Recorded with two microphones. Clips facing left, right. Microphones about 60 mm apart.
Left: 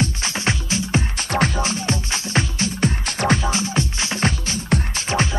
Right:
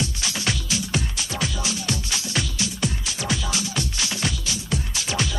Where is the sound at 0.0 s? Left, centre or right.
Left.